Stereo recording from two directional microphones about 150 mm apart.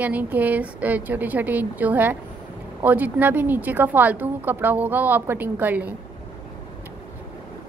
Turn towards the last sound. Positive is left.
turn(degrees=-10)  # may be behind; listen again after turning